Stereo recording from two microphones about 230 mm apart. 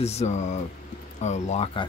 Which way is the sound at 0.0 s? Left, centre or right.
Left.